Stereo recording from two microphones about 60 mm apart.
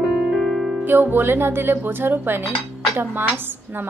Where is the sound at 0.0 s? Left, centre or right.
Centre.